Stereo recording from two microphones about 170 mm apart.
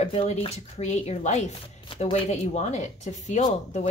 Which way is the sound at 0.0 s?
40° left (ahead or behind).